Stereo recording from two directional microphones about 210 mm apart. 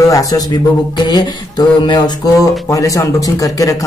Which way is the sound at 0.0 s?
15° left (ahead or behind).